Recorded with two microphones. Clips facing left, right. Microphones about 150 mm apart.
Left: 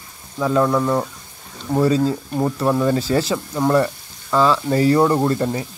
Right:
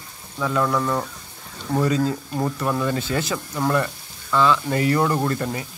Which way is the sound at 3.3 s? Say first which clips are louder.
Left 3 dB; 20° left (ahead or behind).